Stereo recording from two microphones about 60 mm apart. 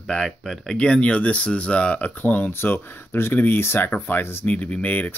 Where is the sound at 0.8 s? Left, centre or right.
Centre.